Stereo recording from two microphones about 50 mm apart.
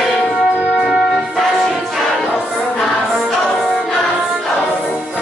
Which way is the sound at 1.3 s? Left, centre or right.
Centre.